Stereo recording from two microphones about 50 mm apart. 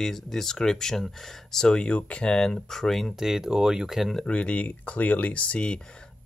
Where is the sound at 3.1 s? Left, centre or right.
Centre.